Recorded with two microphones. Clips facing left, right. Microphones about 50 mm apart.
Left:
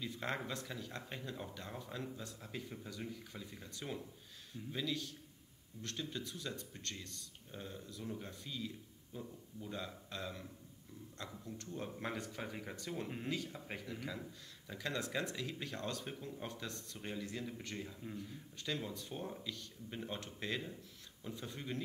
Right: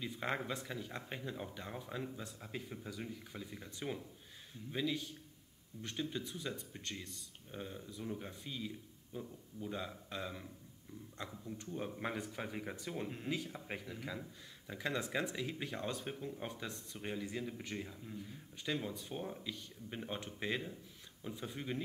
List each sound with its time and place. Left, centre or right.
0.0 s speech: centre
11.4 s a man's voice: centre